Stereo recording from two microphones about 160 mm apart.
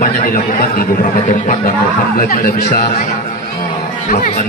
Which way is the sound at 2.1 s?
65° left (ahead or behind).